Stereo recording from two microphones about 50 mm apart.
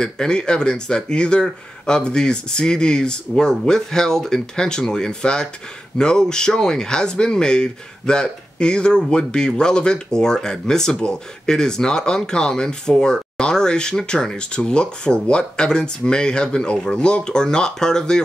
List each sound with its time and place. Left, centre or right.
0.0 s speech: centre